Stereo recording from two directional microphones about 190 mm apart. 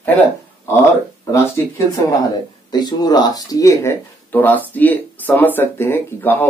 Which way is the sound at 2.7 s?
20° left (ahead or behind).